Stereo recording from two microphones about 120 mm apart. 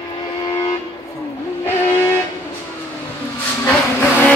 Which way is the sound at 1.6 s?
20° left (ahead or behind).